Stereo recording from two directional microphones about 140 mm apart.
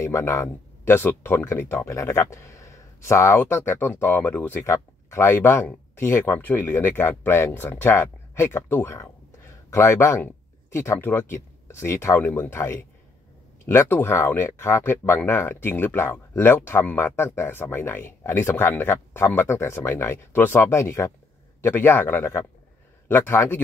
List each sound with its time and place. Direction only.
0.0 s speech: 20° left (ahead or behind)